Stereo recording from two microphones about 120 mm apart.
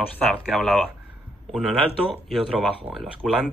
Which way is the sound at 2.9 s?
20° right (ahead or behind).